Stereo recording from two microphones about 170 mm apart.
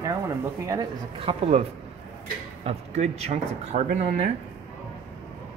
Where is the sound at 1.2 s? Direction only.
35° right (ahead or behind).